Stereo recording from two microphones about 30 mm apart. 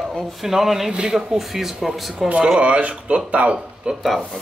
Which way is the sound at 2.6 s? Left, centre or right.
Right.